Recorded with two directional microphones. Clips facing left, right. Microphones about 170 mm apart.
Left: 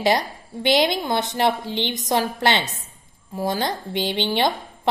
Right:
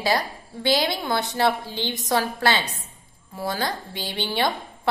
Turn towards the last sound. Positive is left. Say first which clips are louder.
# left 3 dB
turn(degrees=20)  # may be behind; listen again after turning